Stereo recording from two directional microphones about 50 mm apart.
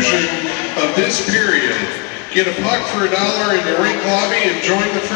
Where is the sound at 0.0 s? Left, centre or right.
Left.